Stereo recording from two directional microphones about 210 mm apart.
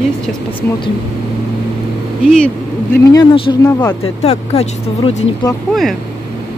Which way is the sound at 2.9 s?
15° left (ahead or behind).